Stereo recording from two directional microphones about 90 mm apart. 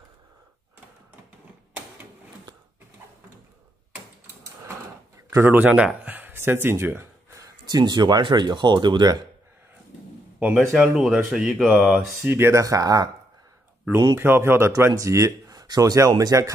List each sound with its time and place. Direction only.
5.3 s speech: 25° right (ahead or behind)
5.7 s a sound: 10° right (ahead or behind); by 7.5 s 30° right (ahead or behind)
7.7 s speech: 50° right (ahead or behind)
10.4 s speech: 5° right (ahead or behind)
12.2 s speech: 25° right (ahead or behind); by 13.1 s 45° right (ahead or behind)
14.1 s speech: 25° right (ahead or behind)